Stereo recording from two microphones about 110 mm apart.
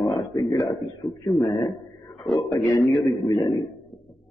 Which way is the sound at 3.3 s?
40° left (ahead or behind).